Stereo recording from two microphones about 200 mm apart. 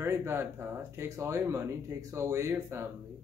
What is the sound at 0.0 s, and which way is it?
Speech, 10° right (ahead or behind).